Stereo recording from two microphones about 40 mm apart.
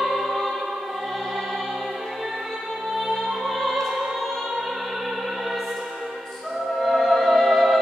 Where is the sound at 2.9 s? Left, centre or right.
Centre.